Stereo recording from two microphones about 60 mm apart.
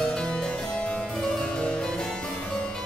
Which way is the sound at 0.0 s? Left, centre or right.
Centre.